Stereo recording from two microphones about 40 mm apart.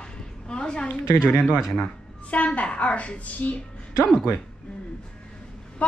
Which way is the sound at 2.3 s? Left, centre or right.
Left.